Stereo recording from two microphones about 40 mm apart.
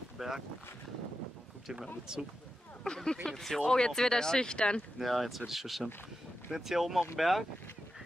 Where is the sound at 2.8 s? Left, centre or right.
Centre.